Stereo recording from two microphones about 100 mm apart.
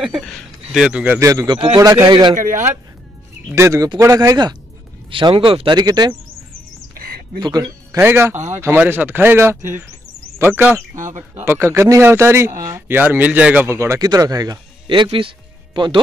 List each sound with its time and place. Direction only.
0.0 s speech: 5° right (ahead or behind)
1.2 s speech: 30° right (ahead or behind)
3.5 s speech: 30° right (ahead or behind)
5.1 s speech: 60° right (ahead or behind)
5.8 s speech: 45° right (ahead or behind)
7.3 s speech: 45° right (ahead or behind)
8.0 s speech: 20° right (ahead or behind)
13.7 s speech: 30° right (ahead or behind)
14.9 s a man's voice: 55° right (ahead or behind)